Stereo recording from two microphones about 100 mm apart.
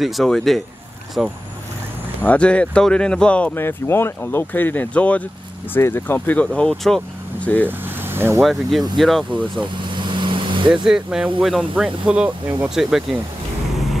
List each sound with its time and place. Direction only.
0.0 s speech: centre (ahead or behind)
2.2 s speech: 10° left (ahead or behind)
3.5 s speech: 25° left (ahead or behind)
7.6 s vehicle: 20° right (ahead or behind)
8.4 s speech: centre (ahead or behind)
9.8 s vehicle: 55° right (ahead or behind)
10.7 s speech: 5° right (ahead or behind)